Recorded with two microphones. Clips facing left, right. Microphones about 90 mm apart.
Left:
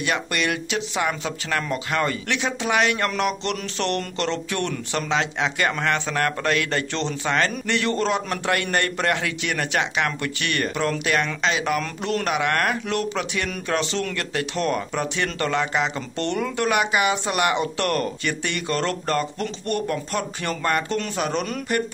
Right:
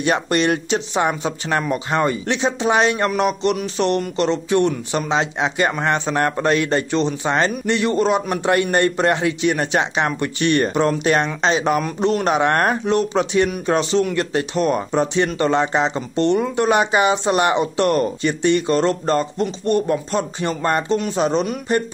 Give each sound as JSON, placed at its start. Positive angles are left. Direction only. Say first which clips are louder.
{"t": 0.0, "sound": "speech", "louder": "right 6 dB", "side_deg": -30}